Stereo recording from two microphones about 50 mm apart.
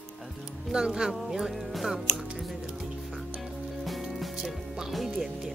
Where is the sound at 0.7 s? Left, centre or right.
Centre.